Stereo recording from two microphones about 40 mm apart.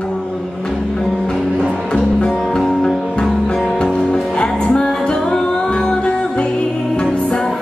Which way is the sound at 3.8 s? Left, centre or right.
Centre.